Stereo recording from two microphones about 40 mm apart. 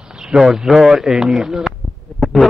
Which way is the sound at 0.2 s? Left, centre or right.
Centre.